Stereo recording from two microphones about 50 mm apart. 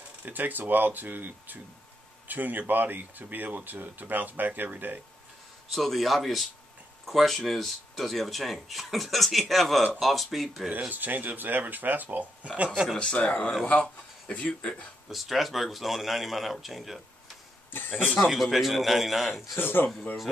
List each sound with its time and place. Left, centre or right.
0.2 s speech: right
5.7 s speech: centre
10.9 s speech: right
12.4 s speech: right
13.0 s speech: left
15.0 s speech: centre
17.6 s a sound: left
18.2 s speech: centre
19.6 s speech: left